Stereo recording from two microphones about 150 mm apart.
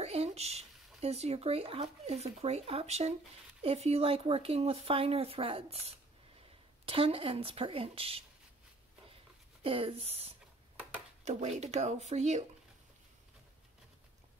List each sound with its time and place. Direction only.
0.0 s speech: 45° right (ahead or behind)
9.6 s speech: 40° right (ahead or behind)